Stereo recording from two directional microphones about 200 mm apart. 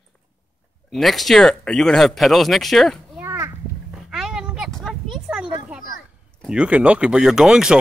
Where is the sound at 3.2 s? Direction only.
10° right (ahead or behind).